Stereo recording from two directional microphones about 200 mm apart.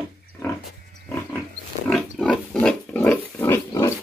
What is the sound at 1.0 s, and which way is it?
Pig, 10° left (ahead or behind).